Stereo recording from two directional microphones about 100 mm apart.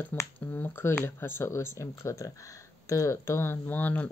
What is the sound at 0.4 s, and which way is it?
Speech, 20° left (ahead or behind).